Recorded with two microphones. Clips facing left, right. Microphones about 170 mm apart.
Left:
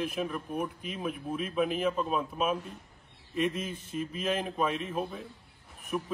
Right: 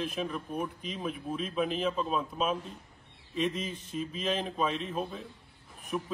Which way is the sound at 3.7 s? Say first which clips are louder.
Left 1 dB; 55° left (ahead or behind).